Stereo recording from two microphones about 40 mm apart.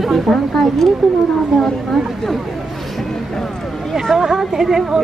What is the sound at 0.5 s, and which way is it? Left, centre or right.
A woman's voice, centre.